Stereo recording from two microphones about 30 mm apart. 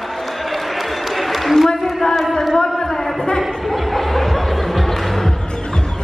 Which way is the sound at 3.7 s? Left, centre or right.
Centre.